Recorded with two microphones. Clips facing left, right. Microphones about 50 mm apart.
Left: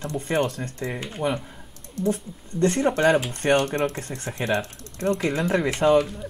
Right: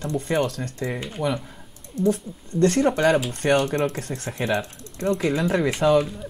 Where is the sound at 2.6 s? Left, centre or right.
Left.